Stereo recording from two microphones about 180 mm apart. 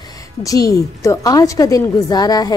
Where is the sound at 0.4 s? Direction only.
20° left (ahead or behind).